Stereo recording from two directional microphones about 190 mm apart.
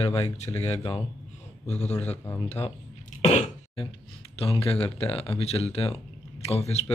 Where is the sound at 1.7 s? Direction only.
35° left (ahead or behind).